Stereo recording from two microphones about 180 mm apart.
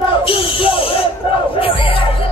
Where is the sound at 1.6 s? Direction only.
30° left (ahead or behind).